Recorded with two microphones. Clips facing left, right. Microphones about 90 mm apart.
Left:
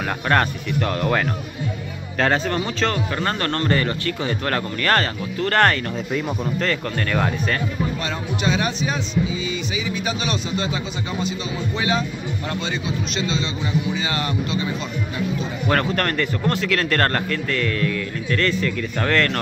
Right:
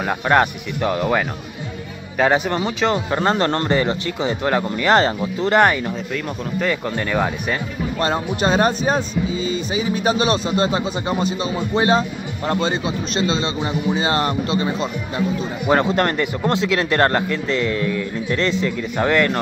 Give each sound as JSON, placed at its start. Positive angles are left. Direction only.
{"t": 0.3, "sound": "speech", "side_deg": -15}
{"t": 8.0, "sound": "speech", "side_deg": -40}
{"t": 15.6, "sound": "speech", "side_deg": -20}